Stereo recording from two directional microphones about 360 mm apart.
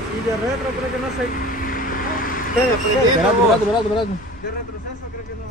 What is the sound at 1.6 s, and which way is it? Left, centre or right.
Vehicle, left.